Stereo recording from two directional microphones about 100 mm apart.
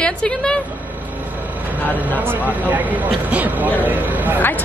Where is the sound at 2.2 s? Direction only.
15° right (ahead or behind).